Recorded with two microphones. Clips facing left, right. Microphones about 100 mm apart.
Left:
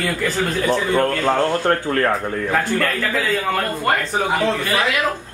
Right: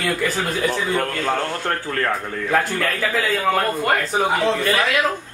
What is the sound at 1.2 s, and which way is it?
Speech, 15° left (ahead or behind).